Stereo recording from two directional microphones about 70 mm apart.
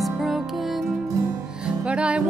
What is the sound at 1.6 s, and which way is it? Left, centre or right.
Music, centre.